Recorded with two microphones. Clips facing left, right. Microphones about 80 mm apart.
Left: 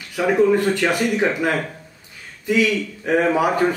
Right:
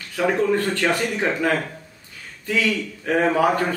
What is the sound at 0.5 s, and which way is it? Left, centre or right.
Speech, centre.